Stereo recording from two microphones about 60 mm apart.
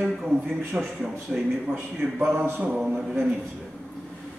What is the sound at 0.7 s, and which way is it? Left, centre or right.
Speech, centre.